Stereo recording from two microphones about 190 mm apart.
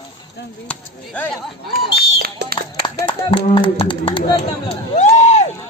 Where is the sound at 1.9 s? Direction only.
55° right (ahead or behind).